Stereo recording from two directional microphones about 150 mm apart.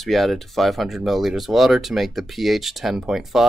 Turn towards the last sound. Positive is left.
turn(degrees=-5)  # may be behind; listen again after turning